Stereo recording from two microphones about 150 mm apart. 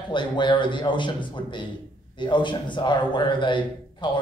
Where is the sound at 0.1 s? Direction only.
30° left (ahead or behind).